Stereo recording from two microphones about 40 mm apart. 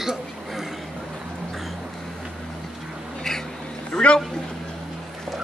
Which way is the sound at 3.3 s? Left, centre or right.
Centre.